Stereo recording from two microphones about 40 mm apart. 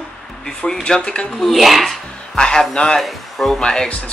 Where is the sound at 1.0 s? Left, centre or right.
Left.